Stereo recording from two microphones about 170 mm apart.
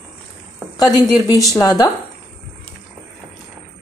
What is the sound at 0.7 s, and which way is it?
A woman's voice, 25° left (ahead or behind).